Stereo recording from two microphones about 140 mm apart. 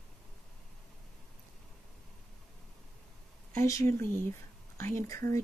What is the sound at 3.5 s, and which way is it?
Speech, 20° left (ahead or behind).